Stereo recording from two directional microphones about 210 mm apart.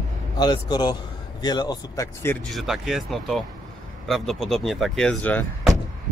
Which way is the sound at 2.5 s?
Centre (ahead or behind).